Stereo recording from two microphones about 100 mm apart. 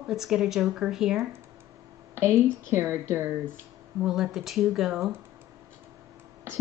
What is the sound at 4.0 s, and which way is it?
A woman's voice, 5° right (ahead or behind).